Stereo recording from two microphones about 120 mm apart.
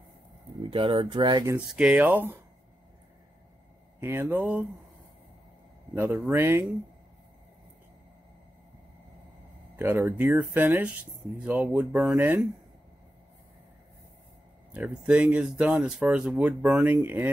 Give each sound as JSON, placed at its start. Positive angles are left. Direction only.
{"t": 0.7, "sound": "speech", "side_deg": -50}
{"t": 1.7, "sound": "speech", "side_deg": -10}
{"t": 4.0, "sound": "speech", "side_deg": -20}
{"t": 5.9, "sound": "speech", "side_deg": -15}
{"t": 9.8, "sound": "speech", "side_deg": -20}
{"t": 14.7, "sound": "speech", "side_deg": -10}